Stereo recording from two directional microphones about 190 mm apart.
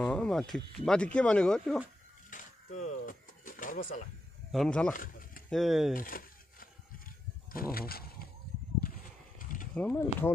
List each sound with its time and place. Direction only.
0.0 s speech: 5° left (ahead or behind)
2.3 s a sound: 40° left (ahead or behind)
4.5 s speech: 5° left (ahead or behind)
4.9 s speech: 45° left (ahead or behind)
5.5 s speech: centre (ahead or behind)
5.9 s a sound: 50° left (ahead or behind)
9.8 s speech: 10° left (ahead or behind)